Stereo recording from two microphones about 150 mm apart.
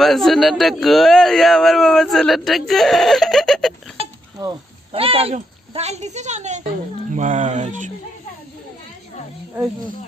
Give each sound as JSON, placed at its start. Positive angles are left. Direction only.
{"t": 0.0, "sound": "a man's voice", "side_deg": 0}
{"t": 4.9, "sound": "speech", "side_deg": -40}